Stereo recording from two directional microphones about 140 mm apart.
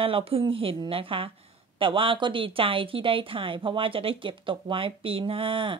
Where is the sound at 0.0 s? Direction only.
40° right (ahead or behind).